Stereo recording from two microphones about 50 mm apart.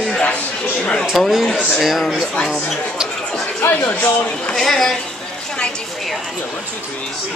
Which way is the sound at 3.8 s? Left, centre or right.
Left.